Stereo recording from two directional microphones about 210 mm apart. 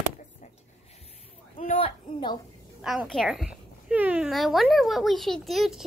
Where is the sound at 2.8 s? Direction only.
Centre (ahead or behind).